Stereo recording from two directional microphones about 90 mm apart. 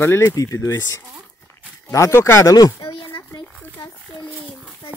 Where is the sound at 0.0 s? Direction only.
30° left (ahead or behind).